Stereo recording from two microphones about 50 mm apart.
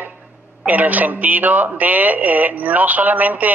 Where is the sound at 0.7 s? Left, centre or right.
Right.